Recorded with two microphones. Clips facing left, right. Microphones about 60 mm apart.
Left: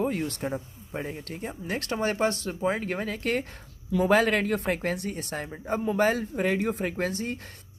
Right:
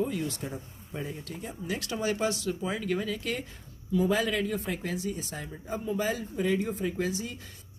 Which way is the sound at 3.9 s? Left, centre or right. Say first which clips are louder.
Left 5 dB; left.